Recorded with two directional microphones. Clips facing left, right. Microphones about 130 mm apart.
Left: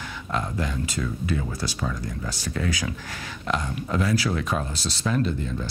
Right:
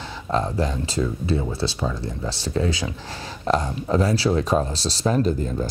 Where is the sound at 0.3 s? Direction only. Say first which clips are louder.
Right 5 dB; 30° right (ahead or behind).